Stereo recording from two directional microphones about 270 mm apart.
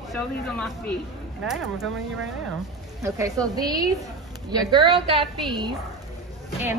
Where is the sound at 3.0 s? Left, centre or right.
Centre.